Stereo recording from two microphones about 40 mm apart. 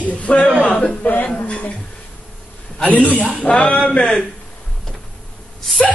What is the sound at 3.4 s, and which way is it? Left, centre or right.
Speech, left.